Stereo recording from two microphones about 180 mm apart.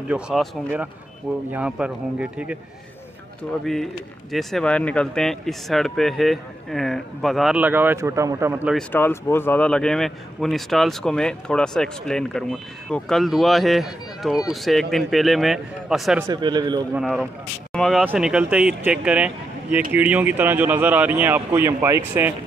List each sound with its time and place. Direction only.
0.1 s speech: 5° right (ahead or behind)
3.6 s speech: centre (ahead or behind)
8.7 s speech: 10° left (ahead or behind)
16.3 s speech: 25° right (ahead or behind)
17.0 s speech: centre (ahead or behind); by 22.3 s 15° right (ahead or behind)